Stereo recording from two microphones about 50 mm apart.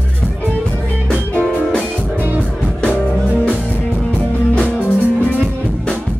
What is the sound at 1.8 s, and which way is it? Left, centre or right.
Music, right.